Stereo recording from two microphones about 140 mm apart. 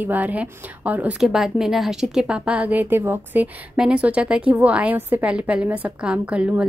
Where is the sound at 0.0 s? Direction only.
10° right (ahead or behind).